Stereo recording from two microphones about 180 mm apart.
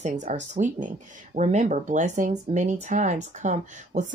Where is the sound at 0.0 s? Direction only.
45° right (ahead or behind).